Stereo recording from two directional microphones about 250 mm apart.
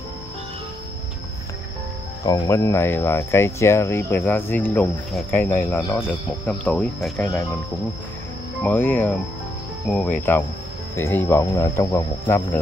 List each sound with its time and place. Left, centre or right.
2.2 s speech: centre
8.6 s speech: centre